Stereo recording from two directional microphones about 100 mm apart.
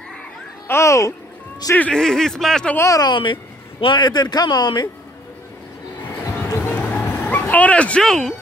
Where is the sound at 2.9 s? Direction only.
40° left (ahead or behind).